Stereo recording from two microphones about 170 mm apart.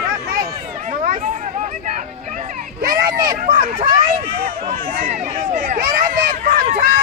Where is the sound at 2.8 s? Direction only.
55° right (ahead or behind).